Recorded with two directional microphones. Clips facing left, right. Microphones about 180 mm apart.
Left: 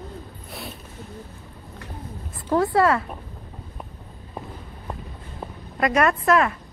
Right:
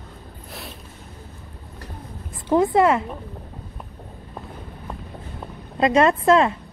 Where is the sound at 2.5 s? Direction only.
20° right (ahead or behind).